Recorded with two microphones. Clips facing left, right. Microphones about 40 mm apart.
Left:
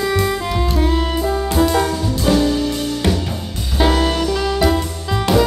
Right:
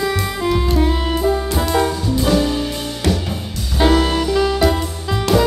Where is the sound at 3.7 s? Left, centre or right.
Centre.